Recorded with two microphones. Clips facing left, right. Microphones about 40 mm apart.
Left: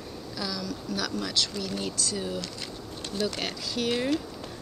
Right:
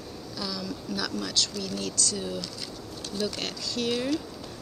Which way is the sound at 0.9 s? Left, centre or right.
Centre.